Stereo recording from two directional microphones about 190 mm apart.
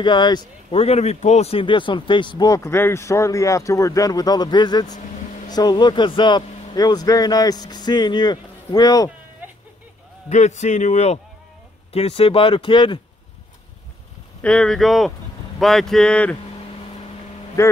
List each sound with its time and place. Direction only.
0.0 s speech: 25° left (ahead or behind)
10.3 s speech: 40° left (ahead or behind)
14.4 s speech: 5° left (ahead or behind)
17.6 s speech: 15° left (ahead or behind)